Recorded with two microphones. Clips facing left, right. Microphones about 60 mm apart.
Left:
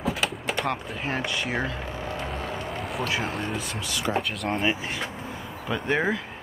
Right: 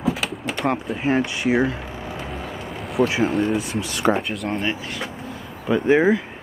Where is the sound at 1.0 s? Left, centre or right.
Centre.